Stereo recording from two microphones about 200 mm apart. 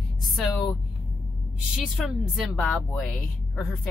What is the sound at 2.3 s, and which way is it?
A woman's voice, centre (ahead or behind).